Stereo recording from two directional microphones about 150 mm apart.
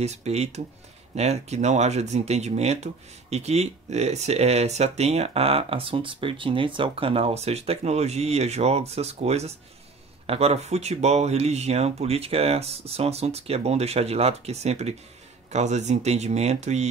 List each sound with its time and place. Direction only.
0.0 s speech: 45° right (ahead or behind)